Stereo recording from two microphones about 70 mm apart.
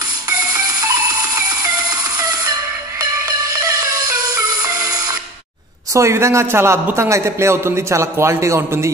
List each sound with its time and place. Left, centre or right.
0.3 s music: right
5.9 s a man's voice: right